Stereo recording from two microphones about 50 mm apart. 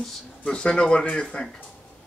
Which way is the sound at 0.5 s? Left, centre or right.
Centre.